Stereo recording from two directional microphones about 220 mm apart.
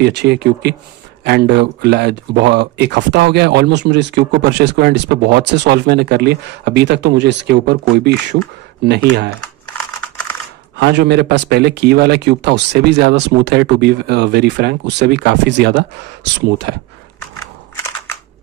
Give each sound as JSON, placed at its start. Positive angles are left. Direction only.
{"t": 0.0, "sound": "speech", "side_deg": -50}
{"t": 10.8, "sound": "speech", "side_deg": -50}